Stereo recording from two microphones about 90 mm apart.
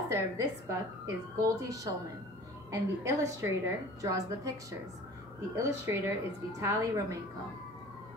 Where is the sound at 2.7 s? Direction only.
35° right (ahead or behind).